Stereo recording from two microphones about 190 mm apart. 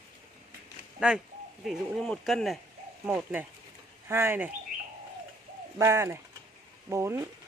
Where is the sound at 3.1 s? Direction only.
10° right (ahead or behind).